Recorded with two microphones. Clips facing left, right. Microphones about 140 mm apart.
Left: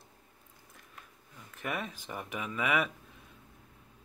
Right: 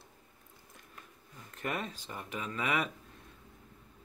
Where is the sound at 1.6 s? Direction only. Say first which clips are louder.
Even; 5° left (ahead or behind).